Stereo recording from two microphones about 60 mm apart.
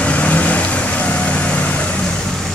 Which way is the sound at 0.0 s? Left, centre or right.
Left.